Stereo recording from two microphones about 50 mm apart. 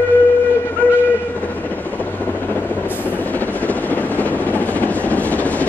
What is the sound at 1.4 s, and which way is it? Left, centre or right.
Vehicle, left.